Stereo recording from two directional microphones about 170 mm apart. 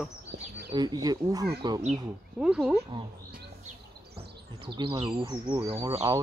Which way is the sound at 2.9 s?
25° right (ahead or behind).